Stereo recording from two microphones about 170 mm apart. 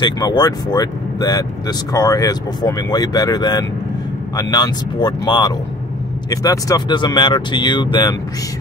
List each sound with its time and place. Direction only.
0.0 s speech: 25° left (ahead or behind)